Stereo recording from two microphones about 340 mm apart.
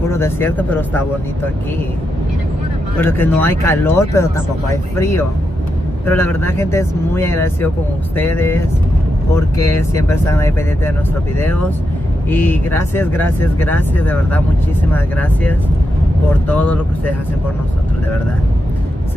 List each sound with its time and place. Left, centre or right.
0.1 s speech: centre
3.0 s speech: centre